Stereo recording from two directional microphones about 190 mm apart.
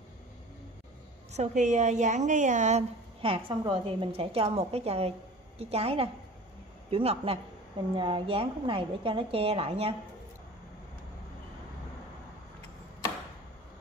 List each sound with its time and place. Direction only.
1.3 s a woman's voice: 40° right (ahead or behind)